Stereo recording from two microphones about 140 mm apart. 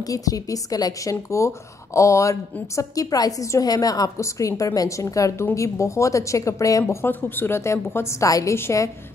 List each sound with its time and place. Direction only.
0.0 s a woman's voice: 25° left (ahead or behind)